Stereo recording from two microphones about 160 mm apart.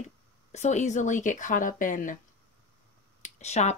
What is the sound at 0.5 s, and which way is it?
Speech, 45° left (ahead or behind).